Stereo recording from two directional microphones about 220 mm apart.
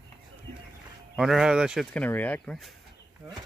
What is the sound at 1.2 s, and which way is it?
Speech, centre (ahead or behind).